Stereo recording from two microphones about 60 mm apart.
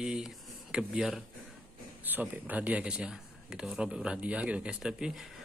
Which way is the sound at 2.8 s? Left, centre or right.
Centre.